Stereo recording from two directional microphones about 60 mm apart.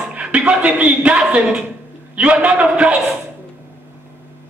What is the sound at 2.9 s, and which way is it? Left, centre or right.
Speech, centre.